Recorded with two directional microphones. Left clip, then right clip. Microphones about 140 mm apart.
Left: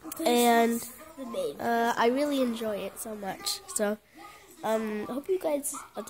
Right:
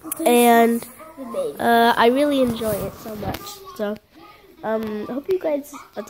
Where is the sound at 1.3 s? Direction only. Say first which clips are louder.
Right 7 dB; 35° left (ahead or behind).